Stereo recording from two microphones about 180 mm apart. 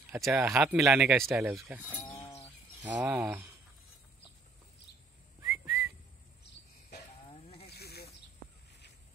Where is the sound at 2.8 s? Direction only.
10° right (ahead or behind).